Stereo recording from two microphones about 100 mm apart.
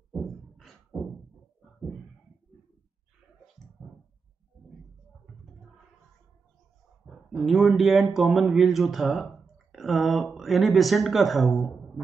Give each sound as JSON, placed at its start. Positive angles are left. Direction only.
{"t": 0.9, "sound": "a sound", "side_deg": -20}
{"t": 3.8, "sound": "clicking", "side_deg": -15}
{"t": 7.3, "sound": "speech", "side_deg": 0}